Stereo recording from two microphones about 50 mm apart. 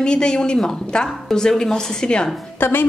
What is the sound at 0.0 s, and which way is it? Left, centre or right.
Speech, centre.